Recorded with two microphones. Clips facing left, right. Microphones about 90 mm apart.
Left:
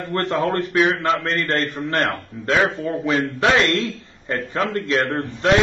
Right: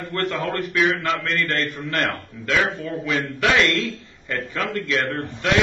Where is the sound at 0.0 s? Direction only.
35° left (ahead or behind).